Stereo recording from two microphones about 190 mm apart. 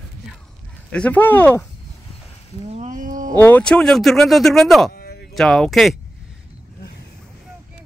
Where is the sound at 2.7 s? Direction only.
40° right (ahead or behind).